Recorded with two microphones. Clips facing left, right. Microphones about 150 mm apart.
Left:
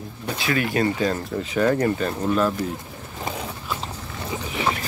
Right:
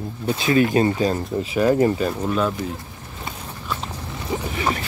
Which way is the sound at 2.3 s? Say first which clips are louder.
Left 1 dB; centre (ahead or behind).